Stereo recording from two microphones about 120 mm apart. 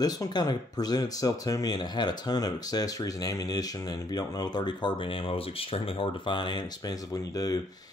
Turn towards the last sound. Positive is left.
turn(degrees=30)  # may be behind; listen again after turning